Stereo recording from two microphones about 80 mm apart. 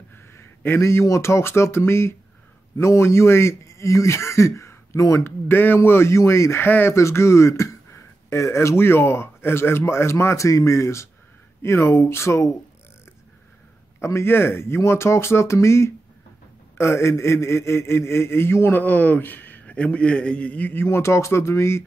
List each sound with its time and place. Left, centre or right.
0.1 s a sound: left
0.7 s a man's voice: left
5.2 s a man's voice: left
13.9 s a man's voice: left